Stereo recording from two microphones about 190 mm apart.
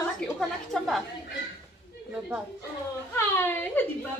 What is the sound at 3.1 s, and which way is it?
Speech, 10° left (ahead or behind).